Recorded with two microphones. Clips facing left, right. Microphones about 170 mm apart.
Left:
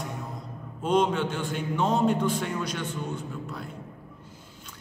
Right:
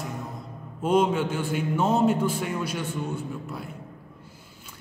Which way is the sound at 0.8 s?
5° right (ahead or behind).